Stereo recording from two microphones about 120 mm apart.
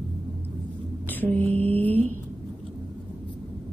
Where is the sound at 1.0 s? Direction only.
15° left (ahead or behind).